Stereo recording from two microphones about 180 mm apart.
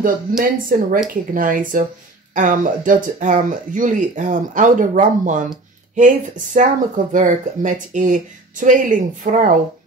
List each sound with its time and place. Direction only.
0.4 s speech: 50° right (ahead or behind)
6.5 s speech: 45° right (ahead or behind)